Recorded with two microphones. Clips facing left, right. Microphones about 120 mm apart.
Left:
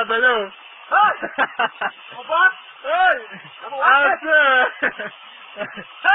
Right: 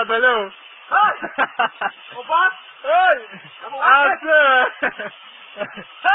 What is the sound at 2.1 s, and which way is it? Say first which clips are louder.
A man's voice: even; 30° right (ahead or behind).